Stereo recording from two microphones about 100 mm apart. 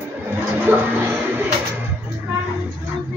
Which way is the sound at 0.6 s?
20° right (ahead or behind).